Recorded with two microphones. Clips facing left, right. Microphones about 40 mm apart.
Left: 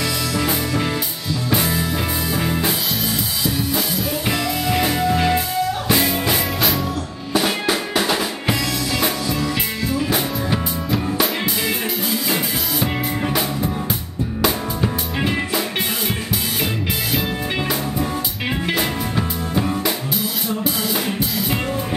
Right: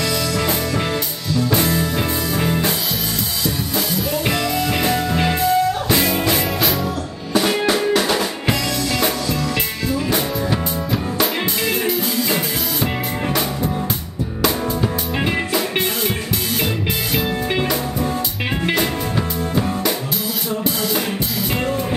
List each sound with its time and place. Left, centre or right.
0.3 s music: centre
3.7 s music: centre
17.2 s music: centre
20.9 s music: centre